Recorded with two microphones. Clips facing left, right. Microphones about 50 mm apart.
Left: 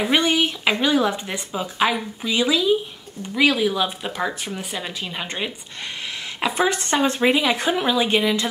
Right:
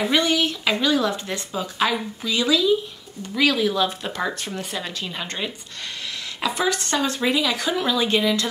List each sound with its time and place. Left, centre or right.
0.0 s speech: centre
6.4 s speech: left